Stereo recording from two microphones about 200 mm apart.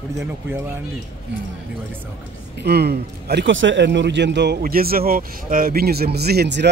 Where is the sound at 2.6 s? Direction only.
55° right (ahead or behind).